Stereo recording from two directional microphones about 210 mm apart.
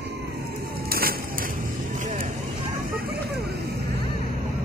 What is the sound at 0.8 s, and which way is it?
Vehicle, 45° right (ahead or behind).